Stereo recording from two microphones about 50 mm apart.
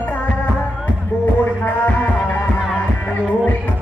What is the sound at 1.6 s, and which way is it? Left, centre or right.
Music, left.